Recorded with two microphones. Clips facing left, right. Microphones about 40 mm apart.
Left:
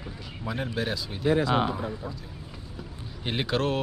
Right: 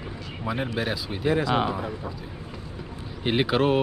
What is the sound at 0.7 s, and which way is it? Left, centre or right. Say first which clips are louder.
Speech: right 2 dB; centre.